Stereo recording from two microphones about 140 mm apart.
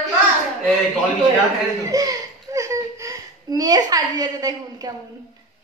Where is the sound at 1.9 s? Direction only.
25° right (ahead or behind).